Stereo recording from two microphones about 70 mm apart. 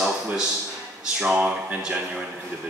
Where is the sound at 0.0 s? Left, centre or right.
Centre.